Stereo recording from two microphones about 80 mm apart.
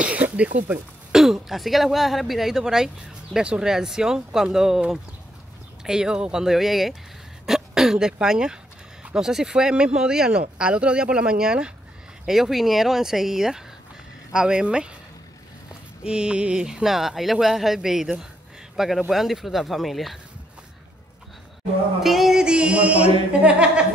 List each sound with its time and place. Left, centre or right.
0.0 s a sound: centre
1.1 s speech: centre
16.0 s speech: centre
22.0 s speech: centre